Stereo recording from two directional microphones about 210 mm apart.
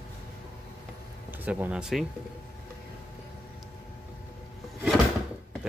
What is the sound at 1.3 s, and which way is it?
Speech, 10° right (ahead or behind).